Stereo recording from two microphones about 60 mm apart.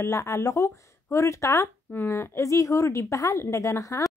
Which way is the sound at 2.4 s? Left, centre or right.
Left.